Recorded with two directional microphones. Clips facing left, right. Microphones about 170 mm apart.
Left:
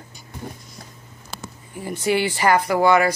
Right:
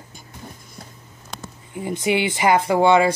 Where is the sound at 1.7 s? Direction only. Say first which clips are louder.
Even; 20° right (ahead or behind).